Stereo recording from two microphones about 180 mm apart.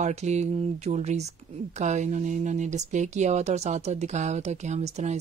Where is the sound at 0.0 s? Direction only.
40° right (ahead or behind).